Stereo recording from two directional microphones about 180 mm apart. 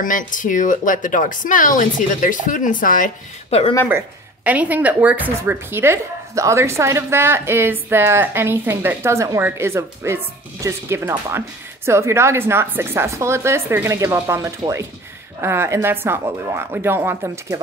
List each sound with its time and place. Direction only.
0.0 s a woman's voice: 45° left (ahead or behind)
4.5 s speech: 10° right (ahead or behind)